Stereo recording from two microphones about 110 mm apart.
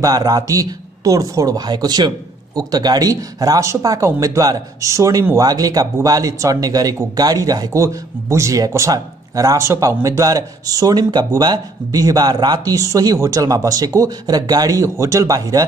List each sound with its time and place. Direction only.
0.0 s speech: 35° right (ahead or behind)